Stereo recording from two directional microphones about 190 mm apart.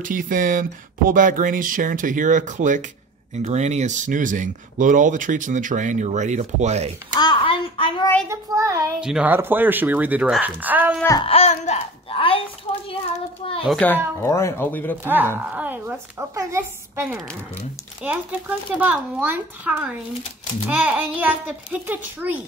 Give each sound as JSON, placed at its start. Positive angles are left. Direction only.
{"t": 0.0, "sound": "speech", "side_deg": -45}
{"t": 7.2, "sound": "child singing", "side_deg": 25}
{"t": 8.3, "sound": "speech", "side_deg": -15}
{"t": 9.0, "sound": "speech", "side_deg": -5}
{"t": 11.0, "sound": "speech", "side_deg": 15}
{"t": 11.2, "sound": "a sound", "side_deg": 35}
{"t": 13.7, "sound": "a child's voice", "side_deg": 5}
{"t": 15.5, "sound": "speech", "side_deg": -10}